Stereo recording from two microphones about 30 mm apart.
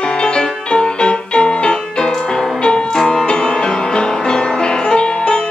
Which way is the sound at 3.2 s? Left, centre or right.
Left.